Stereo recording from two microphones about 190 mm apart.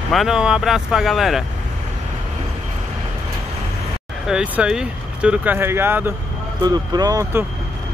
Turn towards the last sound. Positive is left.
turn(degrees=-20)  # may be behind; listen again after turning